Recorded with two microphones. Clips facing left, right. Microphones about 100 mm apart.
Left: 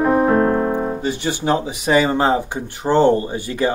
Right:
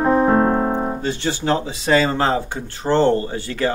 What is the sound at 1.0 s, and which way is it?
Speech, 15° left (ahead or behind).